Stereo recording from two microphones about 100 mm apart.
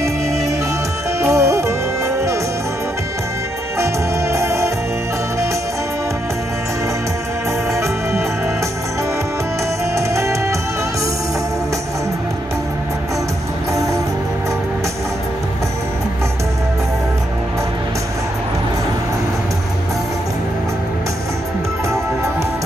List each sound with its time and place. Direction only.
1.2 s music: 30° right (ahead or behind)
3.7 s music: 30° right (ahead or behind)
9.9 s music: 30° right (ahead or behind)